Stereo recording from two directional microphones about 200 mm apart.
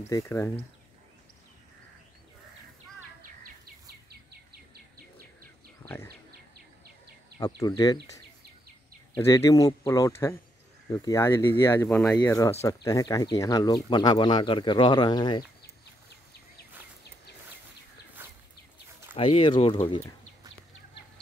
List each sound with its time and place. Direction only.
0.1 s speech: 15° left (ahead or behind)
5.8 s a sound: 15° left (ahead or behind)
7.3 s speech: 20° left (ahead or behind)
9.1 s speech: 15° left (ahead or behind)
18.2 s a sound: 10° right (ahead or behind)
19.1 s speech: 25° left (ahead or behind)